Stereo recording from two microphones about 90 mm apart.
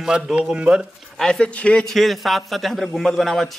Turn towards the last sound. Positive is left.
turn(degrees=0)  # may be behind; listen again after turning